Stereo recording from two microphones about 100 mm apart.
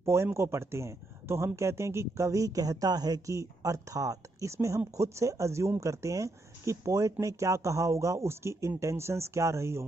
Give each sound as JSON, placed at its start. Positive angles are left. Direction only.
{"t": 0.0, "sound": "speech", "side_deg": -25}